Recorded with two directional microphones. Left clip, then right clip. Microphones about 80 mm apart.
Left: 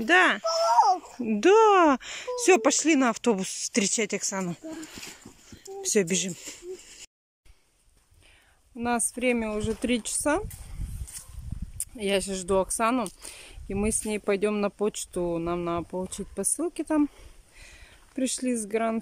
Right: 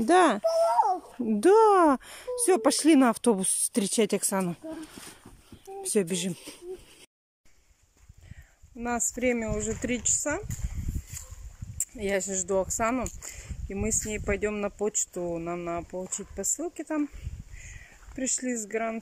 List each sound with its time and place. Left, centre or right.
0.1 s a child's voice: right
0.7 s babbling: right
1.2 s speech: right
4.5 s speech: centre
5.0 s a sound: centre
5.8 s a sound: centre
6.0 s speech: centre
8.8 s speech: centre
9.8 s speech: left
11.8 s speech: centre
13.2 s a sound: centre
14.0 s speech: left; by 15.3 s centre
15.3 s speech: left
18.1 s speech: left